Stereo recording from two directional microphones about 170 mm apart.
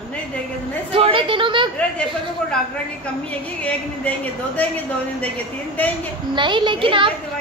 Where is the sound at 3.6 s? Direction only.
10° left (ahead or behind).